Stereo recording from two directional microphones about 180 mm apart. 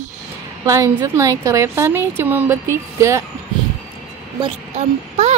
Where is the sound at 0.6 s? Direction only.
20° right (ahead or behind).